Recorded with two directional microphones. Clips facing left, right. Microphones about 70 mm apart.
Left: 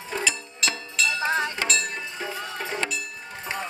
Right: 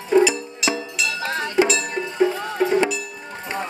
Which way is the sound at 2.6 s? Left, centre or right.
Right.